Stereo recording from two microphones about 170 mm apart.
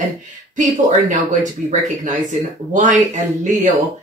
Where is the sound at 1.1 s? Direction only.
50° right (ahead or behind).